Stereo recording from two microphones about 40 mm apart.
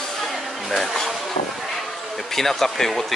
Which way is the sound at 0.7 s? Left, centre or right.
Centre.